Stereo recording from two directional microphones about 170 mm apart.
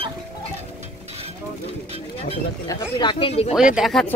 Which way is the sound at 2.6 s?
25° left (ahead or behind).